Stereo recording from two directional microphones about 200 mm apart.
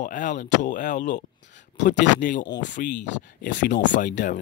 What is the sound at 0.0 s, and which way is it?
Speech, 40° left (ahead or behind).